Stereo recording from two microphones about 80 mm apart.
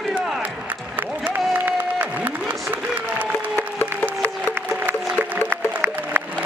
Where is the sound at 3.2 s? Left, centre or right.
Right.